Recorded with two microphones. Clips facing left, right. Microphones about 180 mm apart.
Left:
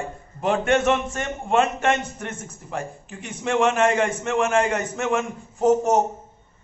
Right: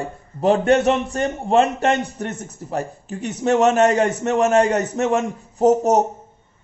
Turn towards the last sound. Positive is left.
turn(degrees=-40)  # may be behind; listen again after turning